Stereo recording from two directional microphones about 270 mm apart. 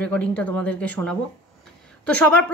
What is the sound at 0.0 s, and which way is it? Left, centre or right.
Speech, centre.